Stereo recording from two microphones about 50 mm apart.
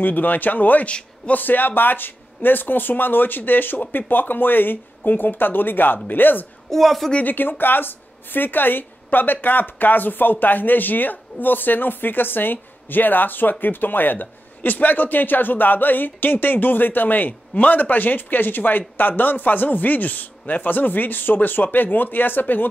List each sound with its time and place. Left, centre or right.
0.0 s a man's voice: left
6.7 s a woman's voice: centre
7.2 s a man's voice: left